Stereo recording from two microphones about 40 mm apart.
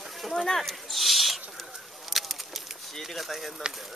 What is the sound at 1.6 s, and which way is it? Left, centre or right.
Bird, centre.